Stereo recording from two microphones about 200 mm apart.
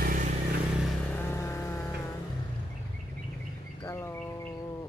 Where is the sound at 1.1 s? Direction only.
10° left (ahead or behind).